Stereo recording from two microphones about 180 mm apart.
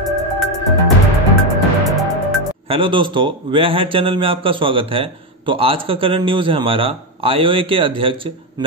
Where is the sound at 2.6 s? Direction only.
30° right (ahead or behind).